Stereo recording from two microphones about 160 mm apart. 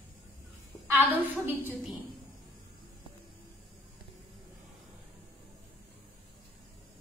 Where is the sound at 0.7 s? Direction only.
20° left (ahead or behind).